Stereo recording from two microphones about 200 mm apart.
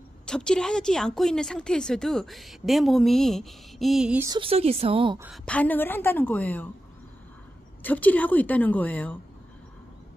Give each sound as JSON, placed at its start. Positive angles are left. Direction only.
{"t": 0.3, "sound": "a woman's voice", "side_deg": 5}
{"t": 4.3, "sound": "a woman's voice", "side_deg": -25}
{"t": 5.2, "sound": "a woman's voice", "side_deg": 0}
{"t": 7.8, "sound": "a woman's voice", "side_deg": 10}